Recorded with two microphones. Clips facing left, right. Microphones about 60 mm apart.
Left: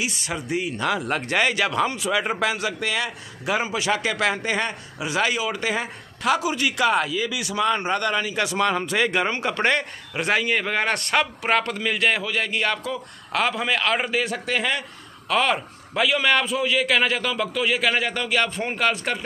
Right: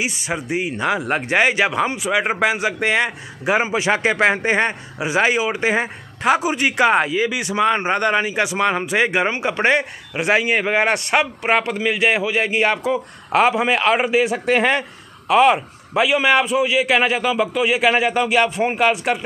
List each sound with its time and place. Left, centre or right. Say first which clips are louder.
0.0 s speech: right 4 dB; right
14.4 s a man's voice: right 7 dB; right
15.2 s a man's voice: right 8 dB; centre